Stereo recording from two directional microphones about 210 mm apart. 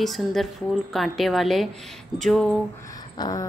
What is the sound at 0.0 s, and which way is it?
A woman's voice, centre (ahead or behind).